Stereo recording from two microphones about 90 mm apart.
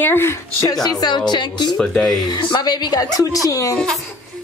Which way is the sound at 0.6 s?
50° left (ahead or behind).